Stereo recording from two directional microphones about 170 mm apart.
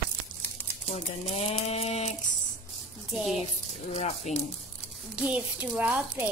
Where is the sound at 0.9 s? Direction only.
40° left (ahead or behind).